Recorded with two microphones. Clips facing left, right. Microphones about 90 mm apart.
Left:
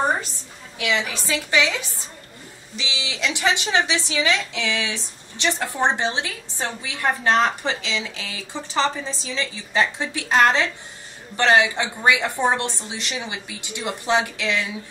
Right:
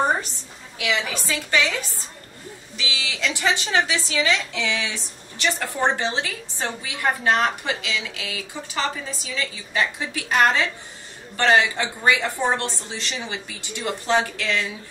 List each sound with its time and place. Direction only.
0.9 s a woman's voice: 15° left (ahead or behind)
13.1 s a woman's voice: 10° left (ahead or behind)
13.6 s a woman's voice: 20° left (ahead or behind)